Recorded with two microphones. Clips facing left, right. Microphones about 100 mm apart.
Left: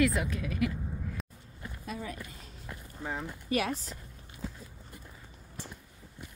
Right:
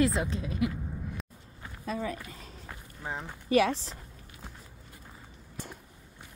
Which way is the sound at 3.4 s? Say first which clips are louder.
Right 7 dB; 30° right (ahead or behind).